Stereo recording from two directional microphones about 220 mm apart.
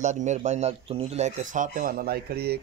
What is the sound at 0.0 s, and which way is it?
A man's voice, 35° right (ahead or behind).